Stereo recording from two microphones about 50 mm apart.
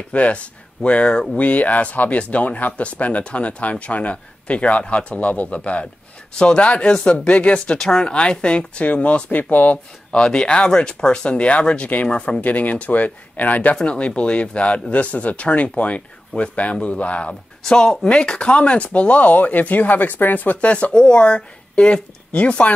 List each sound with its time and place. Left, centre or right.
0.1 s speech: left
7.5 s speech: centre; by 9.8 s left
10.1 s speech: centre
12.4 s speech: left
13.7 s speech: left
20.7 s speech: left